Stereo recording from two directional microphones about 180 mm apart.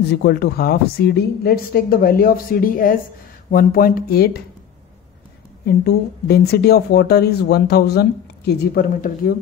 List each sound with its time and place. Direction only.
0.1 s speech: 65° left (ahead or behind)
5.7 s speech: 65° left (ahead or behind)